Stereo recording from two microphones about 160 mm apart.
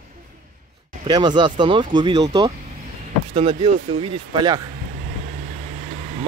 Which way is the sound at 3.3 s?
35° right (ahead or behind).